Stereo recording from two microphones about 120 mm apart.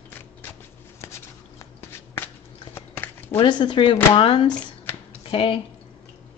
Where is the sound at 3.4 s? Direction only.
40° left (ahead or behind).